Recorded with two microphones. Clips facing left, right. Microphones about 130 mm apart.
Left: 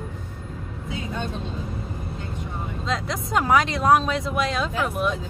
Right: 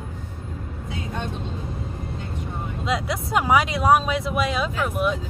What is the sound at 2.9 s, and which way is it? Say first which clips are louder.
Speech: right 2 dB; 5° right (ahead or behind).